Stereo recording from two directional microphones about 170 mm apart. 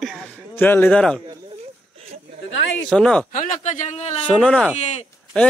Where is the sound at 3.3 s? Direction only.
50° left (ahead or behind).